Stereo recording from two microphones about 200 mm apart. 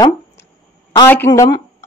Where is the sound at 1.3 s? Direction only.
20° left (ahead or behind).